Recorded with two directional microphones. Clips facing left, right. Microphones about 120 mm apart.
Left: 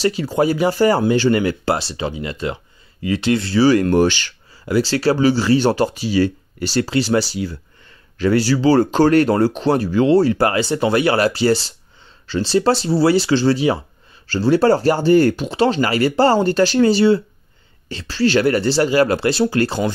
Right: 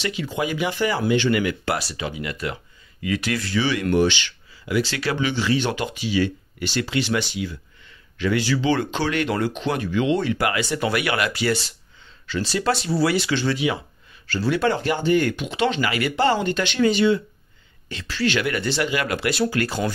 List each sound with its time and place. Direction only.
0.0 s speech: 35° left (ahead or behind)